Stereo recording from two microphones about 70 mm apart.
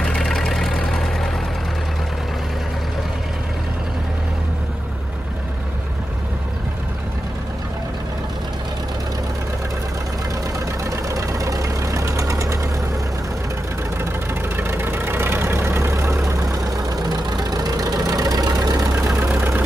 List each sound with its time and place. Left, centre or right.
0.0 s vehicle: centre
10.8 s vehicle: right
14.6 s vehicle: right